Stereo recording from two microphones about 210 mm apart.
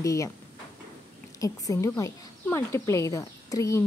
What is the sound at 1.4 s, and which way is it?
Speech, 15° left (ahead or behind).